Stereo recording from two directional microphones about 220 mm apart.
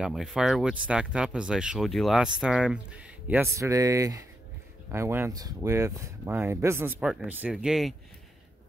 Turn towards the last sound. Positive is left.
turn(degrees=0)  # may be behind; listen again after turning